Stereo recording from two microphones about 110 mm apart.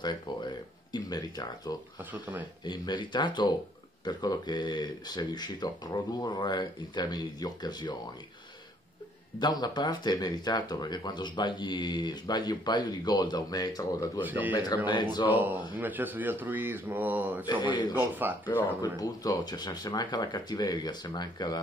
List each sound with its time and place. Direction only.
0.0 s speech: 40° left (ahead or behind)
2.0 s speech: 15° right (ahead or behind)
2.6 s speech: 40° left (ahead or behind)
9.4 s speech: 40° left (ahead or behind)
14.2 s speech: 15° right (ahead or behind)
14.5 s speech: 35° left (ahead or behind)
15.2 s speech: 15° right (ahead or behind)
17.5 s speech: 45° left (ahead or behind)
17.9 s speech: 20° right (ahead or behind)
18.8 s speech: 35° left (ahead or behind)